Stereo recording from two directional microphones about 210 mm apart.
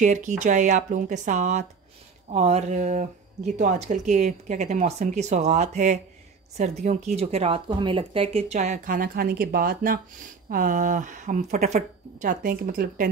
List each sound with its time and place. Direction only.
0.0 s speech: 35° right (ahead or behind)